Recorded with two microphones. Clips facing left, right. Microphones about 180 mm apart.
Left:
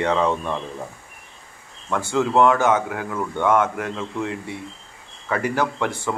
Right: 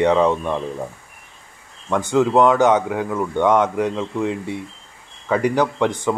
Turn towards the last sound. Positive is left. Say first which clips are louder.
# right 5 dB
turn(degrees=-15)  # may be behind; listen again after turning